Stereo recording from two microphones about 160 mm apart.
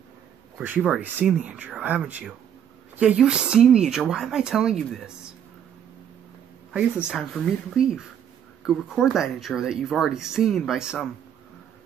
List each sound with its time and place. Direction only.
0.6 s speech: 10° right (ahead or behind)
6.7 s speech: 5° right (ahead or behind)